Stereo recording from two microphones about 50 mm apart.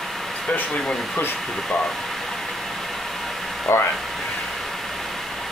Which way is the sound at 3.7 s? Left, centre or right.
Left.